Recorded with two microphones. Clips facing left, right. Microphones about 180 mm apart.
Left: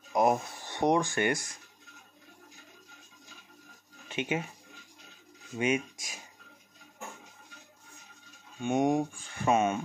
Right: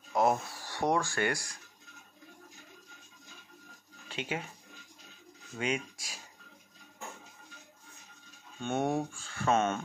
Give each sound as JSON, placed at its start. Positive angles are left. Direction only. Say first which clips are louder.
{"t": 0.1, "sound": "music", "louder": "left 2 dB", "side_deg": 15}
{"t": 4.1, "sound": "speech", "louder": "left 5 dB", "side_deg": 20}
{"t": 5.6, "sound": "speech", "louder": "left 5 dB", "side_deg": 20}
{"t": 8.5, "sound": "speech", "louder": "left 4 dB", "side_deg": 15}